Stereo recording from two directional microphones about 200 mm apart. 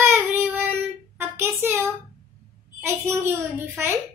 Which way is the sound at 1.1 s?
10° right (ahead or behind).